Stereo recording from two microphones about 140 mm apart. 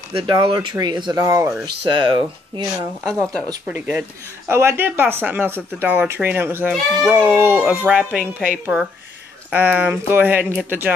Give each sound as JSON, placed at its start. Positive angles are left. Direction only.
{"t": 0.1, "sound": "speech", "side_deg": -35}
{"t": 1.9, "sound": "speech", "side_deg": -35}
{"t": 3.1, "sound": "speech", "side_deg": 10}
{"t": 3.6, "sound": "speech", "side_deg": -10}
{"t": 6.7, "sound": "speech", "side_deg": 0}
{"t": 7.2, "sound": "speech", "side_deg": -15}
{"t": 9.5, "sound": "speech", "side_deg": -10}